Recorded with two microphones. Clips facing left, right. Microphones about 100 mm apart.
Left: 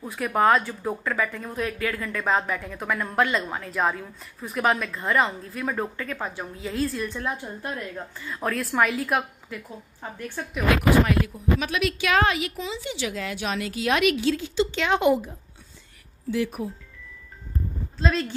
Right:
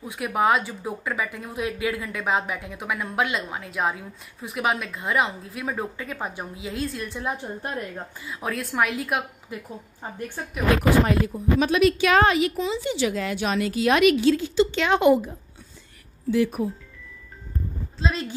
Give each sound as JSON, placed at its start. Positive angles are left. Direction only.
{"t": 0.0, "sound": "speech", "side_deg": -5}
{"t": 7.2, "sound": "a woman's voice", "side_deg": -15}
{"t": 7.6, "sound": "a woman's voice", "side_deg": -25}
{"t": 8.2, "sound": "speech", "side_deg": -5}
{"t": 9.5, "sound": "a woman's voice", "side_deg": -20}
{"t": 11.1, "sound": "a woman's voice", "side_deg": -30}
{"t": 17.9, "sound": "speech", "side_deg": 0}